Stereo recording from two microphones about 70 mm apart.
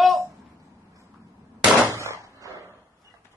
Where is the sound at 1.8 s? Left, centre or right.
Right.